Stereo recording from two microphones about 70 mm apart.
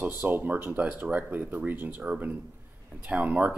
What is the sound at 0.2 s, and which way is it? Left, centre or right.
Speech, right.